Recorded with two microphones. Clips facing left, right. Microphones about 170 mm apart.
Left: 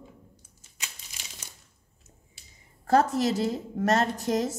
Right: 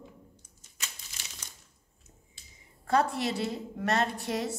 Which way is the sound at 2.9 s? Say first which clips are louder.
Left 5 dB; 45° left (ahead or behind).